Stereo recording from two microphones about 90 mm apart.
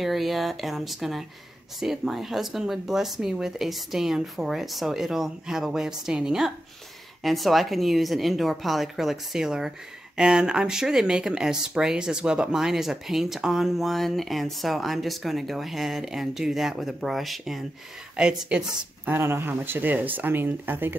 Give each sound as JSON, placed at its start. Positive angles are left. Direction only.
{"t": 0.0, "sound": "speech", "side_deg": 0}
{"t": 19.0, "sound": "speech", "side_deg": -25}